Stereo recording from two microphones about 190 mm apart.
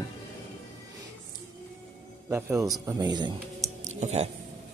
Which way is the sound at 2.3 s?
10° right (ahead or behind).